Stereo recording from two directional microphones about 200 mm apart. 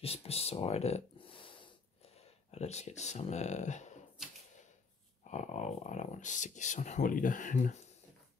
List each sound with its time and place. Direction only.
0.0 s a sound: 30° left (ahead or behind)
2.0 s speech: 30° left (ahead or behind)
5.3 s speech: 35° left (ahead or behind)